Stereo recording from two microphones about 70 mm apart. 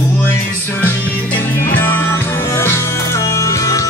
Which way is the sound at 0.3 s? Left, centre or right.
Left.